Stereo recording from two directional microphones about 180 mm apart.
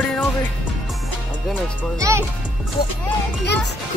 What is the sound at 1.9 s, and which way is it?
Speech, 15° right (ahead or behind).